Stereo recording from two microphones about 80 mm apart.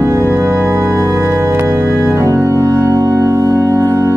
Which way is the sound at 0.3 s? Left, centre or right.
Right.